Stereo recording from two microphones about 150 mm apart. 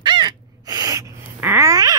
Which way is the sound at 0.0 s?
30° right (ahead or behind).